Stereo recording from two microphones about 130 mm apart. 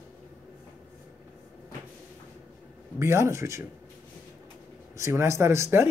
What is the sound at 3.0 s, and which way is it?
Speech, 20° right (ahead or behind).